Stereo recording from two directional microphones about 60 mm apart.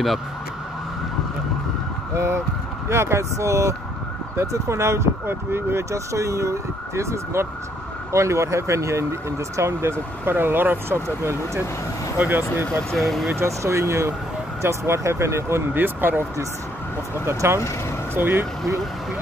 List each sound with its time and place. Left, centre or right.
2.1 s speech: right
5.9 s speech: right
12.2 s speech: right
12.9 s speech: centre
13.4 s speech: right
15.7 s speech: right
17.3 s speech: right
18.1 s speech: right